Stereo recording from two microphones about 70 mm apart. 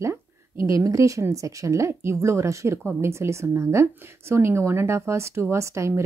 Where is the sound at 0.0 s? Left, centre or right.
Right.